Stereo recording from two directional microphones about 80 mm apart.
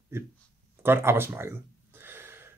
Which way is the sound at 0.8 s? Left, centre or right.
Right.